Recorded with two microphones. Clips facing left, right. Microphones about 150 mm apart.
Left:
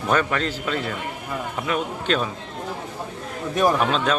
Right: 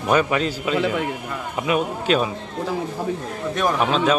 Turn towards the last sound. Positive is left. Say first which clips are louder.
# right 1 dB
turn(degrees=0)  # may be behind; listen again after turning